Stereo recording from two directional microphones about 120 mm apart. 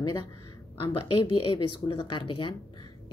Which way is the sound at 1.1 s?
45° left (ahead or behind).